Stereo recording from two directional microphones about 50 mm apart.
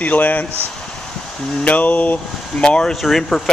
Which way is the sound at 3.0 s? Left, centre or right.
Centre.